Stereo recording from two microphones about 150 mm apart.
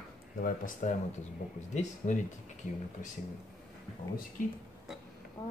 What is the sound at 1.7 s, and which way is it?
Speech, 55° left (ahead or behind).